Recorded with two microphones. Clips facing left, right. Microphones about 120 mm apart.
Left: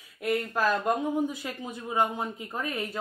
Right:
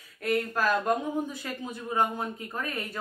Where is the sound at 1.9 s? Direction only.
15° left (ahead or behind).